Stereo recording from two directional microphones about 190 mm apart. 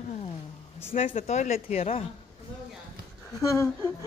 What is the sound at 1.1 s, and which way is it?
Speech, 40° left (ahead or behind).